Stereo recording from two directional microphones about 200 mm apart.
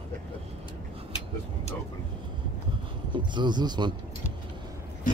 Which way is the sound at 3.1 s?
25° right (ahead or behind).